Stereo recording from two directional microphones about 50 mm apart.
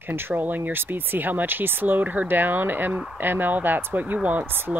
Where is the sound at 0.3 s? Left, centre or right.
Right.